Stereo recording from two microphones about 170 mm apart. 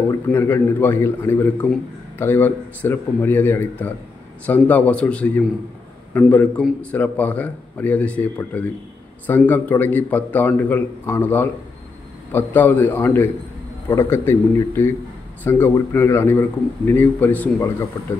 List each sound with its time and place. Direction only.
0.3 s a man's voice: 15° left (ahead or behind)